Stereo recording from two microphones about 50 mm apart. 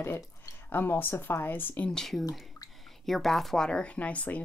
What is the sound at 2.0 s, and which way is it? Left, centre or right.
Speech, centre.